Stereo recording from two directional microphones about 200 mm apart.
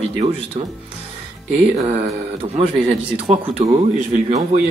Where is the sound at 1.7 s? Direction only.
35° right (ahead or behind).